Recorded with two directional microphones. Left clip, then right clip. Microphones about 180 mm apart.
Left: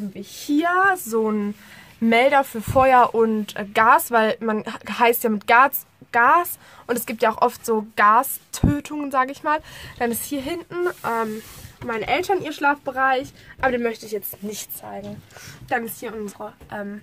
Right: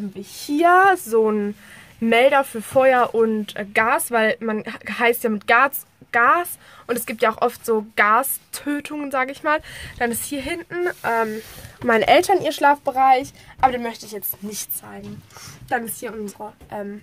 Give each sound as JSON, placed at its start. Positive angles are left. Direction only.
{"t": 0.6, "sound": "speech", "side_deg": -50}
{"t": 1.0, "sound": "speech", "side_deg": -25}
{"t": 2.0, "sound": "speech", "side_deg": -5}
{"t": 11.8, "sound": "speech", "side_deg": -55}